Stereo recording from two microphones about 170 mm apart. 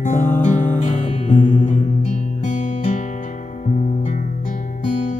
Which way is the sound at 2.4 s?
45° left (ahead or behind).